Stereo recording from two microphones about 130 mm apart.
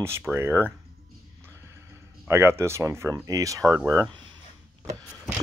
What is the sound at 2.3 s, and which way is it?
Speech, 20° right (ahead or behind).